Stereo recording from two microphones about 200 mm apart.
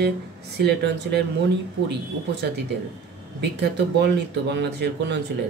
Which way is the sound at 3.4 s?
55° right (ahead or behind).